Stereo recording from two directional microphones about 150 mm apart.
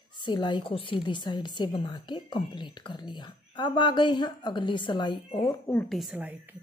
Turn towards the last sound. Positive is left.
turn(degrees=-10)  # may be behind; listen again after turning